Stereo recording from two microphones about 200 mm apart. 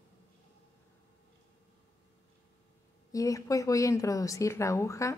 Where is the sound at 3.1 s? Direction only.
15° left (ahead or behind).